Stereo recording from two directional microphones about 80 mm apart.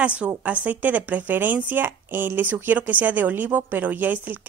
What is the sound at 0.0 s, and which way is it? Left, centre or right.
A woman's voice, centre.